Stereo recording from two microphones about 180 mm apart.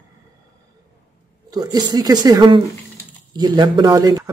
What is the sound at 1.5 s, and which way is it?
Speech, 20° right (ahead or behind).